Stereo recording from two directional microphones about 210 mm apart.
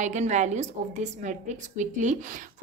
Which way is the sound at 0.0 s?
35° right (ahead or behind).